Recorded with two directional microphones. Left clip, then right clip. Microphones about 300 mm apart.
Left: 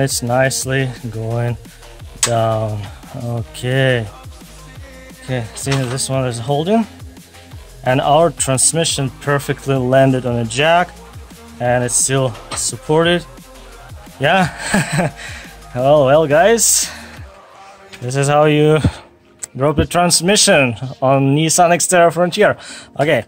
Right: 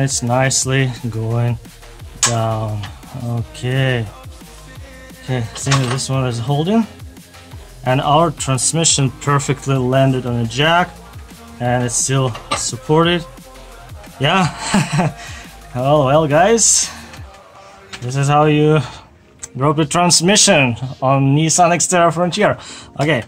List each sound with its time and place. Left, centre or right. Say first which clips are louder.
0.0 s speech: left 2 dB; left
5.9 s speech: left 2 dB; left
7.8 s speech: left 2 dB; left
14.2 s speech: left 2 dB; left
18.0 s speech: left 1 dB; left